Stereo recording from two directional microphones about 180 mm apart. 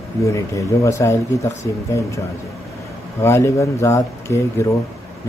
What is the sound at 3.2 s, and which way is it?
Speech, 15° left (ahead or behind).